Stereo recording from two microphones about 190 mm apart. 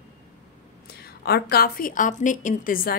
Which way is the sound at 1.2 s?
55° left (ahead or behind).